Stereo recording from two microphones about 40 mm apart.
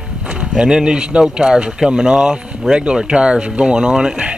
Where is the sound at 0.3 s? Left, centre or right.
Right.